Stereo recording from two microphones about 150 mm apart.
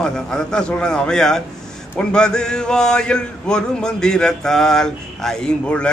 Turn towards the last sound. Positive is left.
turn(degrees=5)  # may be behind; listen again after turning